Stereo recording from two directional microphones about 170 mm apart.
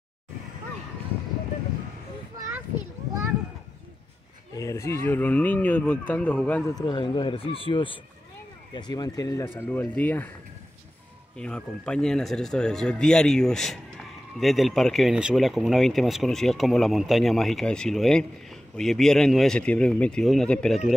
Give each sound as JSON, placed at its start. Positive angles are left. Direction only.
{"t": 2.3, "sound": "a sound", "side_deg": -20}
{"t": 4.6, "sound": "speech", "side_deg": 20}
{"t": 6.7, "sound": "speech", "side_deg": 25}
{"t": 11.3, "sound": "speech", "side_deg": 5}